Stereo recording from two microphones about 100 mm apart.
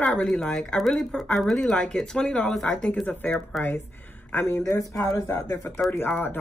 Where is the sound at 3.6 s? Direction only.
20° left (ahead or behind).